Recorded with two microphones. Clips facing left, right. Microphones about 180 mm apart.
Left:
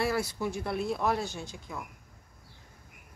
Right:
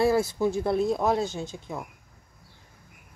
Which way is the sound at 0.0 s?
25° right (ahead or behind).